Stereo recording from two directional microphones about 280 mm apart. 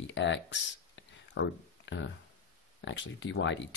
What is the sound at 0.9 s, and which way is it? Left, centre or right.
Whispering, left.